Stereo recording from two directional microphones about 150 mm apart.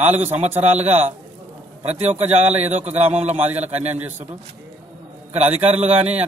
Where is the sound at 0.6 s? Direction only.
50° right (ahead or behind).